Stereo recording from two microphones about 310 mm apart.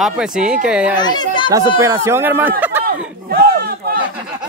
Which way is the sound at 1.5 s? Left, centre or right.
Centre.